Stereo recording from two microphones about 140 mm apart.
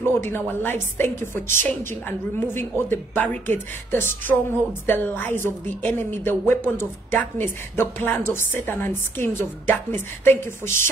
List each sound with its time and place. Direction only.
0.0 s a woman's voice: 15° left (ahead or behind)